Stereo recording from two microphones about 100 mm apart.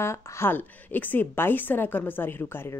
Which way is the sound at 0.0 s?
25° left (ahead or behind).